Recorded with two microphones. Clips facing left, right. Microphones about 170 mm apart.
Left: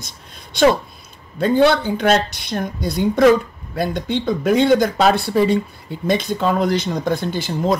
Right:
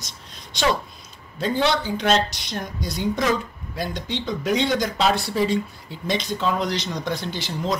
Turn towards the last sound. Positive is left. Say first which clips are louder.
# left 7 dB
turn(degrees=50)  # may be behind; listen again after turning